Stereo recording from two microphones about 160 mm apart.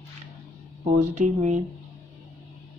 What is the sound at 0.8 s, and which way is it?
Speech, 50° right (ahead or behind).